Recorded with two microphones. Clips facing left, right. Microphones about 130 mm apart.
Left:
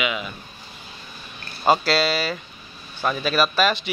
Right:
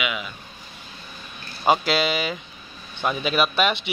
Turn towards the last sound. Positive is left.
turn(degrees=-20)  # may be behind; listen again after turning